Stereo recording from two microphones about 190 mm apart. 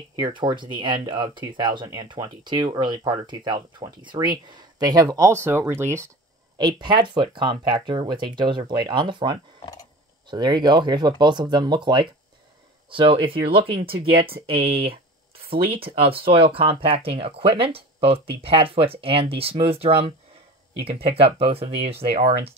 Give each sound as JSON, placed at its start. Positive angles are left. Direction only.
{"t": 0.2, "sound": "speech", "side_deg": -25}
{"t": 6.6, "sound": "speech", "side_deg": -25}
{"t": 15.8, "sound": "speech", "side_deg": -30}